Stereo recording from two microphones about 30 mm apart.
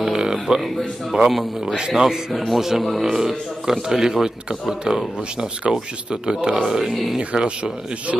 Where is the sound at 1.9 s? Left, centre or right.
Centre.